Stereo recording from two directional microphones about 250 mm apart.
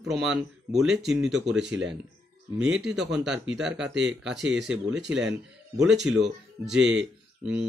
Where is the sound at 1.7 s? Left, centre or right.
Right.